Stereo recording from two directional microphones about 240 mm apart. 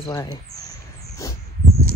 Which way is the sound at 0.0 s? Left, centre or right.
Centre.